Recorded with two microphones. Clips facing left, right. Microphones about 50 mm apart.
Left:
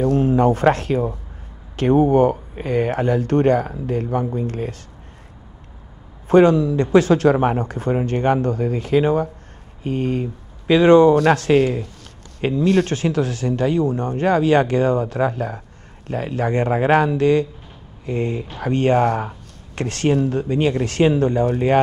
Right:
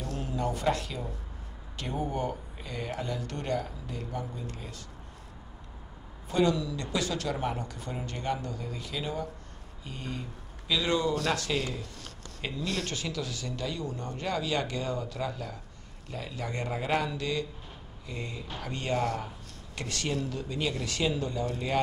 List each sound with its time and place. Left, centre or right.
0.0 s speech: left
6.2 s speech: left